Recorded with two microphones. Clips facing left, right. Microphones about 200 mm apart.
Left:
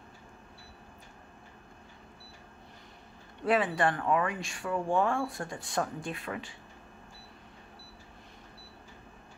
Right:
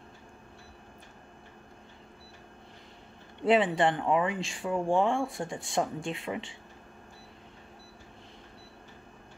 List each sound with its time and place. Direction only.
3.4 s speech: 25° right (ahead or behind)